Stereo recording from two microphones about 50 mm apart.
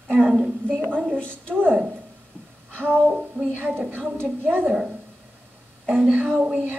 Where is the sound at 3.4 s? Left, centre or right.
Right.